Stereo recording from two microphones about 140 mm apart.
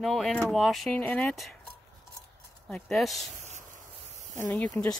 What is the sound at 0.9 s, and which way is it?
Speech, 10° left (ahead or behind).